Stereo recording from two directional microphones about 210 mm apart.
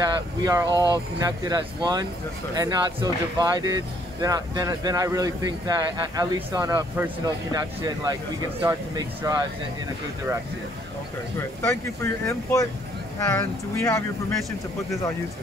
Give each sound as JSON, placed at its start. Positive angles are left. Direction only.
{"t": 0.4, "sound": "speech", "side_deg": -20}
{"t": 11.3, "sound": "speech", "side_deg": 10}